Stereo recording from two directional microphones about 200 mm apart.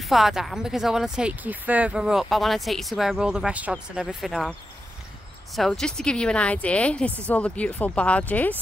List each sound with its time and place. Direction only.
0.0 s speech: centre (ahead or behind)
5.6 s speech: centre (ahead or behind)